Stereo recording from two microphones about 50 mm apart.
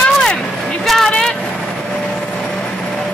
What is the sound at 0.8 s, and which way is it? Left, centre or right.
Vehicle, centre.